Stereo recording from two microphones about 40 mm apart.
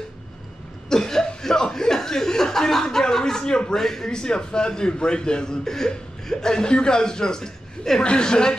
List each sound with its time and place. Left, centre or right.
0.8 s chuckle: centre
3.7 s a man's voice: centre